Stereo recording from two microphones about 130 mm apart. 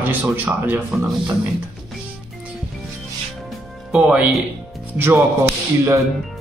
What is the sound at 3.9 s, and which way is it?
Speech, 5° right (ahead or behind).